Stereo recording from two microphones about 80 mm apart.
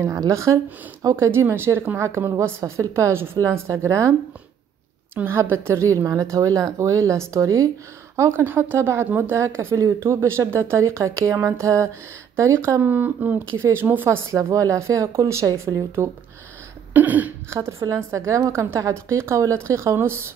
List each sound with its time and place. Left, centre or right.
0.0 s a woman's voice: right
5.1 s a woman's voice: right
8.2 s a woman's voice: right
9.4 s a woman's voice: right
12.8 s speech: right
13.5 s a woman's voice: right
16.9 s speech: right
17.5 s a woman's voice: right
18.8 s a woman's voice: right